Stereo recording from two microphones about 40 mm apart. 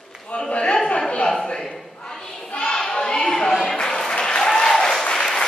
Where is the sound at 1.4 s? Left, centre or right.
Centre.